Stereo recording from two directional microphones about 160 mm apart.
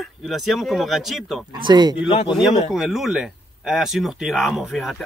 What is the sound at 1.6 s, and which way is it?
Speech, 25° right (ahead or behind).